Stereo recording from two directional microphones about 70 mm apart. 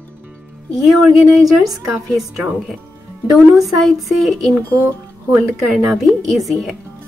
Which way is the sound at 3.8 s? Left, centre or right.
Centre.